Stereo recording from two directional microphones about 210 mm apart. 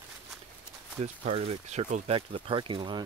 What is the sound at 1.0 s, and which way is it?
Speech, 30° right (ahead or behind).